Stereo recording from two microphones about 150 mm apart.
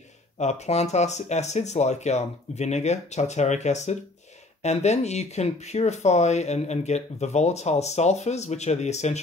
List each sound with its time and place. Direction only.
0.4 s speech: 45° left (ahead or behind)